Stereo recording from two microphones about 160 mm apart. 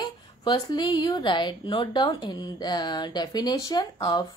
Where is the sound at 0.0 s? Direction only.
30° left (ahead or behind).